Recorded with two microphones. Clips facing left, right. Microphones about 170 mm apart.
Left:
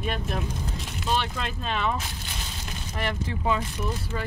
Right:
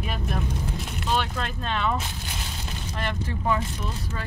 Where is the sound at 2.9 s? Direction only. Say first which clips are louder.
Left 1 dB; 15° left (ahead or behind).